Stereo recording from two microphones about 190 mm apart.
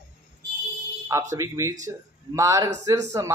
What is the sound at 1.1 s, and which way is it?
Speech, 15° right (ahead or behind).